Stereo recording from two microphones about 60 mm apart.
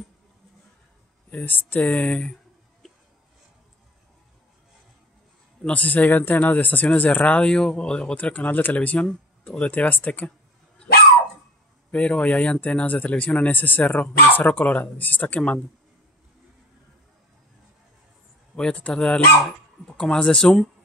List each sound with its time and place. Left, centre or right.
1.3 s speech: left
5.7 s speech: left
7.4 s speech: centre
11.9 s speech: left
18.6 s speech: centre